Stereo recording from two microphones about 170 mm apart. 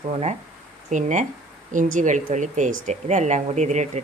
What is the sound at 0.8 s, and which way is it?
Speech, 45° right (ahead or behind).